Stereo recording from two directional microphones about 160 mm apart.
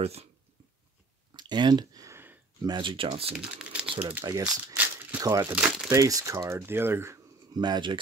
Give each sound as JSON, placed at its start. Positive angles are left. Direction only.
{"t": 0.0, "sound": "speech", "side_deg": -40}
{"t": 1.3, "sound": "a sound", "side_deg": -30}
{"t": 2.7, "sound": "speech", "side_deg": -30}
{"t": 3.3, "sound": "speech", "side_deg": -5}
{"t": 4.2, "sound": "speech", "side_deg": -25}
{"t": 5.5, "sound": "speech", "side_deg": -5}
{"t": 5.9, "sound": "speech", "side_deg": -20}
{"t": 7.5, "sound": "speech", "side_deg": -25}